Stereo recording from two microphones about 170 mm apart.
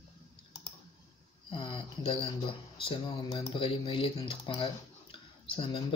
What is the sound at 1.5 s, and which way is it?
Speech, 30° left (ahead or behind).